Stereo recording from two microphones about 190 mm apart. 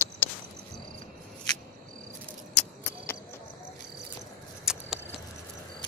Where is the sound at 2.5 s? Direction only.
10° left (ahead or behind).